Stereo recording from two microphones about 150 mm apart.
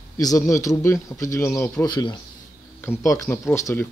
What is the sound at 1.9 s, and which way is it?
Speech, 30° left (ahead or behind).